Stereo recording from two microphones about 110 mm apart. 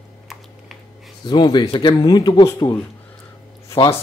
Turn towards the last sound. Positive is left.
turn(degrees=30)  # may be behind; listen again after turning